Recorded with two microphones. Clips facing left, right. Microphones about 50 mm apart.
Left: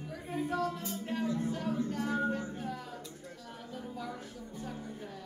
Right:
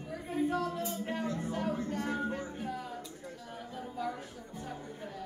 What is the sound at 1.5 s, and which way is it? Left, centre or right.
Music, centre.